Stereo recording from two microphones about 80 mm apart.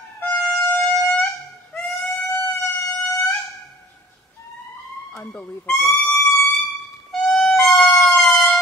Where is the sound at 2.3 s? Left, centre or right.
Left.